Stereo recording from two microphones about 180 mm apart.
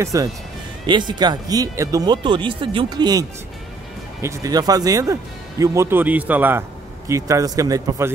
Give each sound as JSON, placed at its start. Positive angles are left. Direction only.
{"t": 0.0, "sound": "speech", "side_deg": -20}